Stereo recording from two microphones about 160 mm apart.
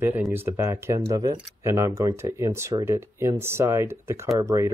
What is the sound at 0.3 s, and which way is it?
Speech, 15° right (ahead or behind).